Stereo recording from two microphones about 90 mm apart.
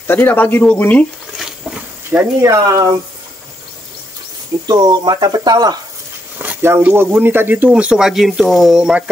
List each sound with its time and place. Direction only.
0.0 s speech: 20° left (ahead or behind)
1.4 s a sound: 10° right (ahead or behind)
2.1 s speech: 25° right (ahead or behind)
2.4 s speech: 40° right (ahead or behind)
4.6 s speech: 45° right (ahead or behind)
6.3 s a sound: 20° right (ahead or behind)
6.7 s speech: 25° right (ahead or behind)